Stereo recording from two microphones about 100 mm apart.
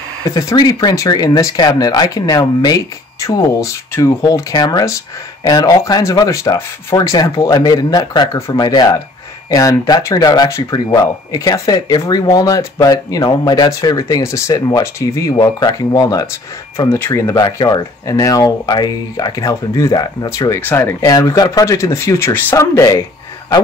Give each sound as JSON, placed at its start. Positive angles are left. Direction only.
{"t": 0.3, "sound": "speech", "side_deg": 40}
{"t": 13.7, "sound": "speech", "side_deg": 35}
{"t": 15.3, "sound": "speech", "side_deg": 45}
{"t": 20.2, "sound": "speech", "side_deg": 30}